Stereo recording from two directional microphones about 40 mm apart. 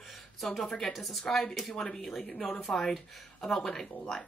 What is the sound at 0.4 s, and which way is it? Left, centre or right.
A woman's voice, centre.